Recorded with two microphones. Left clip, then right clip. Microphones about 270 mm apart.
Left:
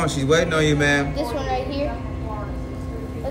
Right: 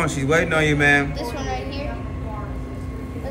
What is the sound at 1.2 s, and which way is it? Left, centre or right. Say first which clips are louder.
Speech: left 3 dB; left.